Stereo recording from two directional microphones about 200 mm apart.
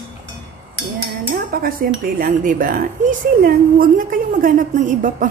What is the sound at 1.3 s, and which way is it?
Cutlery, 45° right (ahead or behind).